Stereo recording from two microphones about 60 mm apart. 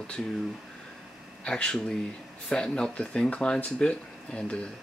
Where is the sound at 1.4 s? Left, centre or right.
Centre.